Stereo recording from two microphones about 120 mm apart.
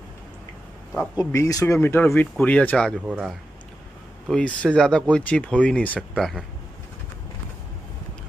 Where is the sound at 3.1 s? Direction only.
10° right (ahead or behind).